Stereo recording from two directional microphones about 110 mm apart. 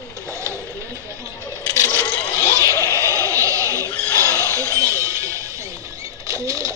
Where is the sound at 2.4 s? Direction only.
30° right (ahead or behind).